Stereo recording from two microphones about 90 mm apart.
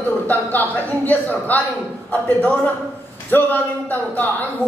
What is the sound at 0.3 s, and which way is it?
A man's voice, 20° left (ahead or behind).